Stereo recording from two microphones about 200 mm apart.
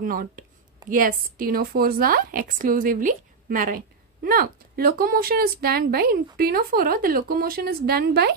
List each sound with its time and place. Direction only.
0.0 s speech: 45° right (ahead or behind)